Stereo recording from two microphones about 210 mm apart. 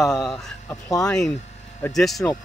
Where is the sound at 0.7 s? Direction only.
15° left (ahead or behind).